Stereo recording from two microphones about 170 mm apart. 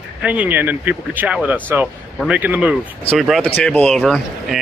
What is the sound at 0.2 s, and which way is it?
Speech, 10° right (ahead or behind).